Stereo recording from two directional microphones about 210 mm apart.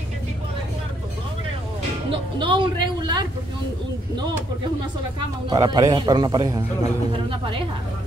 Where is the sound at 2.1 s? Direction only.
25° right (ahead or behind).